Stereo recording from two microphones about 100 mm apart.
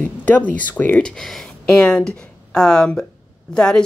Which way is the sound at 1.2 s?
5° left (ahead or behind).